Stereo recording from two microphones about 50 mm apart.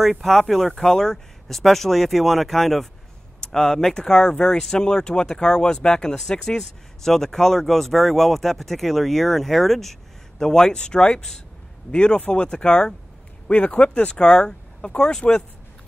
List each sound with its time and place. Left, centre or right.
0.0 s speech: centre